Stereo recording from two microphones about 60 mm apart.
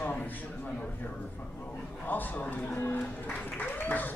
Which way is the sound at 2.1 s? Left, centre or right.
Left.